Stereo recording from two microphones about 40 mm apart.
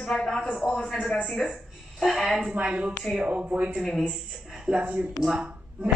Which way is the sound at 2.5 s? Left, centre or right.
Right.